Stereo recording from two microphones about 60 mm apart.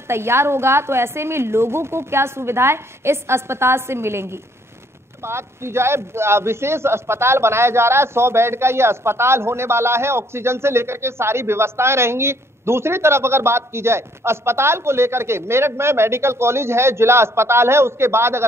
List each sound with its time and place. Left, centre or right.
0.1 s a man's voice: right